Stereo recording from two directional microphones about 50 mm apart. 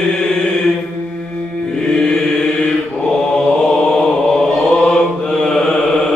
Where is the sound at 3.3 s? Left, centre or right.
Centre.